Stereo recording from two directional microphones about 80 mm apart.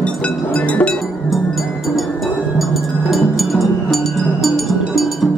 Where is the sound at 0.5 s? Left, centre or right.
Centre.